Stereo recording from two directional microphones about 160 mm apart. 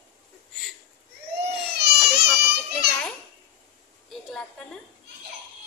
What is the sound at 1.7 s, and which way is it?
Baby cry, 90° right.